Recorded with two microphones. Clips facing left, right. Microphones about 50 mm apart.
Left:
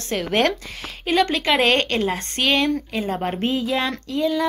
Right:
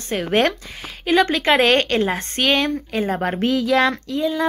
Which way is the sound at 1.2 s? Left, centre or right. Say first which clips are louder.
Right 3 dB; right.